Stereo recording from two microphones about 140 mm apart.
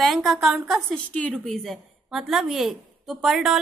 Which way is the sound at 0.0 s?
Centre (ahead or behind).